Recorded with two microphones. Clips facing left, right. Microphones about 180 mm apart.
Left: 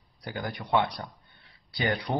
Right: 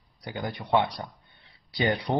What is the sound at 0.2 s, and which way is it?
Speech, 20° right (ahead or behind).